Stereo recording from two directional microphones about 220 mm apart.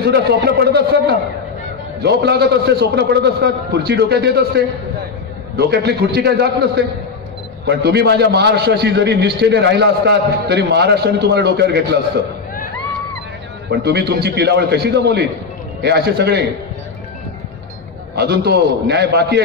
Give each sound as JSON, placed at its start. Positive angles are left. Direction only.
{"t": 0.0, "sound": "a man's voice", "side_deg": -50}
{"t": 13.7, "sound": "a man's voice", "side_deg": -50}
{"t": 18.1, "sound": "a man's voice", "side_deg": -50}